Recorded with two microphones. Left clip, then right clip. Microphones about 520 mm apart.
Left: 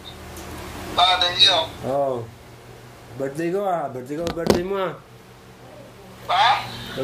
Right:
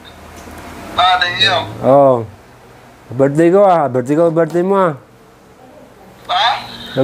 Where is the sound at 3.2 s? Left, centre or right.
Right.